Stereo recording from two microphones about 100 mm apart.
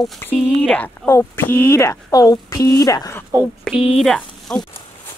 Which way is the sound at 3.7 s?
5° left (ahead or behind).